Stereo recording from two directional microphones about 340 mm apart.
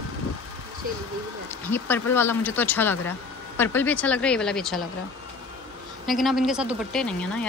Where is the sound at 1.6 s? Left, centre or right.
Centre.